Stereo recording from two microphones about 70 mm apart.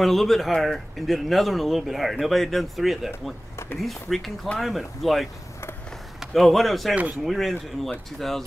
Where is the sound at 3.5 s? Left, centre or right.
Left.